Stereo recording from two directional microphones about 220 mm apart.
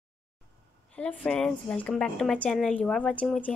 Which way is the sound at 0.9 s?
5° left (ahead or behind).